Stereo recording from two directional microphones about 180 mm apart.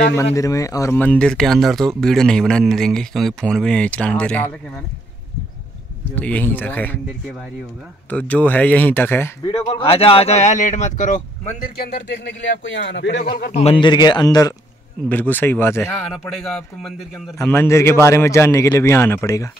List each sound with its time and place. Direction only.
0.1 s speech: 15° left (ahead or behind)
6.1 s a man's voice: 10° left (ahead or behind)
8.1 s a man's voice: 10° left (ahead or behind)
9.4 s speech: 25° left (ahead or behind); by 11.5 s 45° left (ahead or behind)
12.6 s speech: 80° left
13.2 s a man's voice: 55° left (ahead or behind)
13.5 s a man's voice: 35° left (ahead or behind)
15.0 s a man's voice: 10° left (ahead or behind)
16.1 s speech: centre (ahead or behind)
17.4 s a man's voice: 15° left (ahead or behind)